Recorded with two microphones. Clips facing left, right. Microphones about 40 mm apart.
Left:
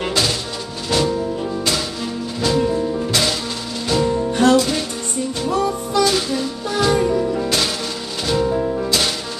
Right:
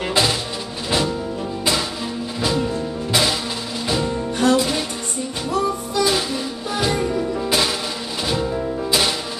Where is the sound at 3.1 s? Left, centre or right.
Centre.